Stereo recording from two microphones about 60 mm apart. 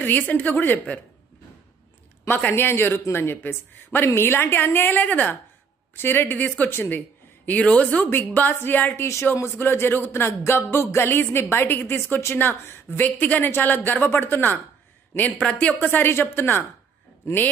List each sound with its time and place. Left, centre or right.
0.0 s a woman's voice: left
2.2 s speech: left
7.4 s speech: left
9.0 s speech: left
9.3 s speech: left
14.0 s speech: left
15.4 s a woman's voice: centre
15.8 s speech: left
16.1 s speech: left